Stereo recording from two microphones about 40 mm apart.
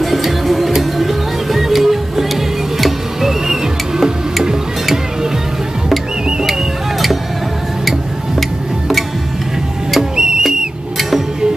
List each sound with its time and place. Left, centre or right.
0.0 s music: centre
8.4 s music: centre
10.1 s whistle: centre
11.0 s music: centre